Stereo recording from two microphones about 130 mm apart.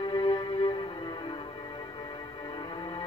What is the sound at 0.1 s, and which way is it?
Music, 35° left (ahead or behind).